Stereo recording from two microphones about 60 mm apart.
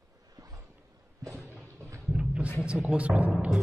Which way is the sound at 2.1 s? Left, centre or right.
Centre.